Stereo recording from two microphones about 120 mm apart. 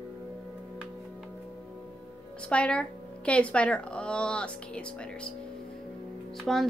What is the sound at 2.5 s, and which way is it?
A woman's voice, 10° left (ahead or behind).